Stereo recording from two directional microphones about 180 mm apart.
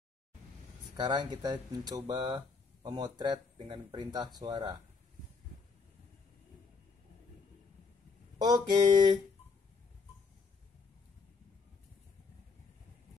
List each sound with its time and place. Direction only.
0.9 s speech: 25° right (ahead or behind)
8.4 s speech: 25° right (ahead or behind)